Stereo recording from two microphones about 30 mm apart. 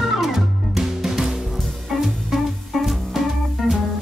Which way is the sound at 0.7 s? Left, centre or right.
Centre.